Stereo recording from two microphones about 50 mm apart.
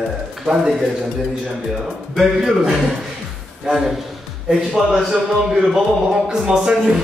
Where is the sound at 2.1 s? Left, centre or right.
Centre.